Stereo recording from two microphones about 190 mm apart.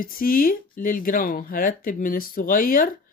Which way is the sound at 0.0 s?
50° left (ahead or behind).